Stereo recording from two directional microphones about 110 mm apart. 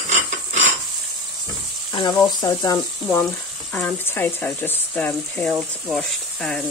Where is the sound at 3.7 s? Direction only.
15° left (ahead or behind).